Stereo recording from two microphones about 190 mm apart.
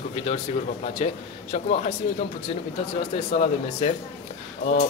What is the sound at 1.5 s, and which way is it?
Speech, 35° left (ahead or behind).